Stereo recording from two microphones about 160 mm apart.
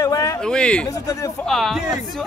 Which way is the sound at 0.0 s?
20° left (ahead or behind).